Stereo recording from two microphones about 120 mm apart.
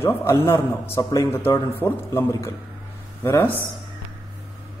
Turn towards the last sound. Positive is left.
turn(degrees=20)  # may be behind; listen again after turning